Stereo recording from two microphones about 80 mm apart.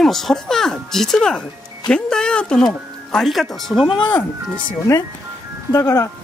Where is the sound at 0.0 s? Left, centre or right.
Centre.